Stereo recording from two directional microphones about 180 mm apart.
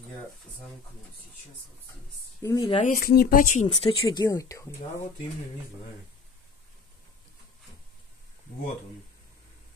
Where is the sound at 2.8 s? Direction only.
55° left (ahead or behind); by 3.9 s 40° left (ahead or behind).